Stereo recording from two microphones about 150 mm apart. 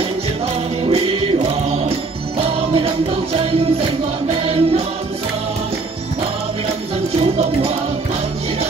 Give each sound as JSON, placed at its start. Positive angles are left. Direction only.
{"t": 0.8, "sound": "music", "side_deg": -40}
{"t": 7.2, "sound": "music", "side_deg": -45}